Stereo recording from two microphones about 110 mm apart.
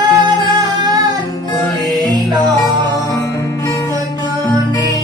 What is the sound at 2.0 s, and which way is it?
Music, 40° right (ahead or behind).